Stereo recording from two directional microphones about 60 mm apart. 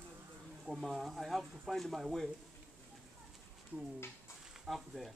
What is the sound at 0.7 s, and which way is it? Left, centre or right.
Speech, centre.